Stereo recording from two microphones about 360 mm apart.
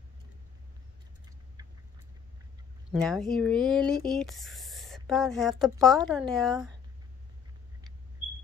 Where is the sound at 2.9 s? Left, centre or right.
Centre.